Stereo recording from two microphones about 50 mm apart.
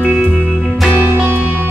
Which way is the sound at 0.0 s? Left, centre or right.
Centre.